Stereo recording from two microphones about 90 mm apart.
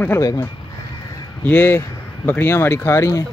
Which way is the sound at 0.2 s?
40° left (ahead or behind).